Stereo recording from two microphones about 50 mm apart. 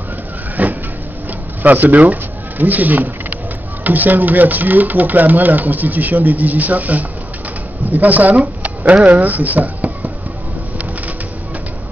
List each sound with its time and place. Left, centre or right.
0.6 s vehicle: right
1.6 s speech: right